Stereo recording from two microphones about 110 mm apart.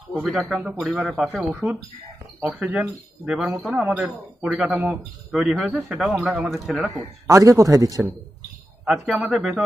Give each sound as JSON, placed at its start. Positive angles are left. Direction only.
{"t": 0.2, "sound": "speech", "side_deg": -5}
{"t": 7.2, "sound": "a man's voice", "side_deg": -30}
{"t": 8.8, "sound": "speech", "side_deg": -5}